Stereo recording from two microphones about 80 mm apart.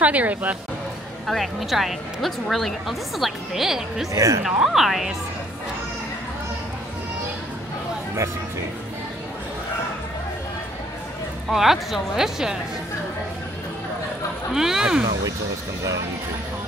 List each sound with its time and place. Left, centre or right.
0.0 s speech: centre
1.2 s speech: centre
4.1 s speech: right
4.5 s speech: centre
11.5 s speech: centre
14.5 s speech: centre